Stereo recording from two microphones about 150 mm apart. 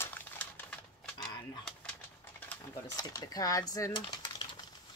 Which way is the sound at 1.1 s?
25° left (ahead or behind).